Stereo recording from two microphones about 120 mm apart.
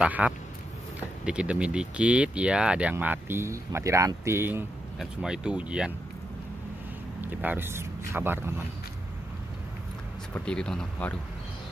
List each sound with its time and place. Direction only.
0.0 s speech: 10° right (ahead or behind)
4.9 s speech: 5° right (ahead or behind)
7.2 s speech: 15° right (ahead or behind)
10.3 s speech: 10° left (ahead or behind)